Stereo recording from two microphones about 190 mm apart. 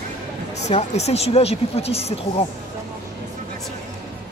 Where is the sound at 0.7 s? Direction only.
35° left (ahead or behind).